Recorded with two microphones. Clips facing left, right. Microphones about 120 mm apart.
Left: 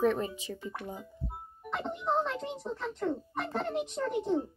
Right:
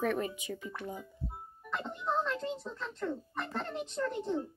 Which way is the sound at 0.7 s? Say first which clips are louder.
Left 1 dB; 20° left (ahead or behind).